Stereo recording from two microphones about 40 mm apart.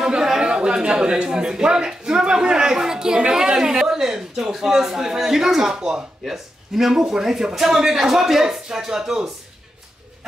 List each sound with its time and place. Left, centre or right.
0.1 s a man's voice: centre
6.2 s a man's voice: centre